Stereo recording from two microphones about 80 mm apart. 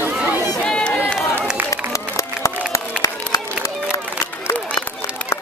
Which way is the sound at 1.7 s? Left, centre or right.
Left.